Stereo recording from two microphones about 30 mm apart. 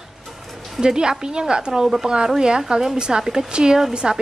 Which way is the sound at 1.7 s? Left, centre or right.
Centre.